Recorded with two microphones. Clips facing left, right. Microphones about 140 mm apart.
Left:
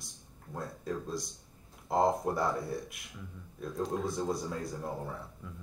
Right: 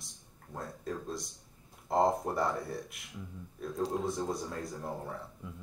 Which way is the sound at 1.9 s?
5° left (ahead or behind).